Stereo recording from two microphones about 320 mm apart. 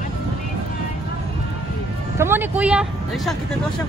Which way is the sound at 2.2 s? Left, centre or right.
Centre.